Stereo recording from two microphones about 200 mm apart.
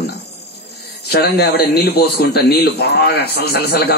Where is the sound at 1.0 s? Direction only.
55° left (ahead or behind).